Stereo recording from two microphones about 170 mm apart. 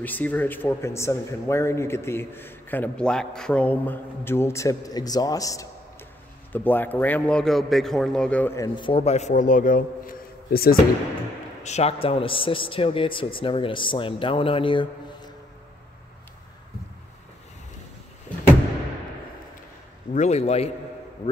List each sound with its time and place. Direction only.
0.0 s speech: 10° left (ahead or behind)
8.6 s a man's voice: 30° left (ahead or behind); by 10.8 s 60° left (ahead or behind)
11.6 s speech: 40° left (ahead or behind)
20.2 s speech: 40° left (ahead or behind)